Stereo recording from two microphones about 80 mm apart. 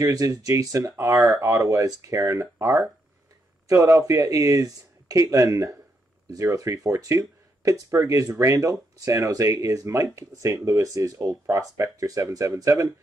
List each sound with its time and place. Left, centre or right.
0.0 s speech: right